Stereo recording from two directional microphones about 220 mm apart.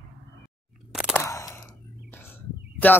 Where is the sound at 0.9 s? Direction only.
5° right (ahead or behind).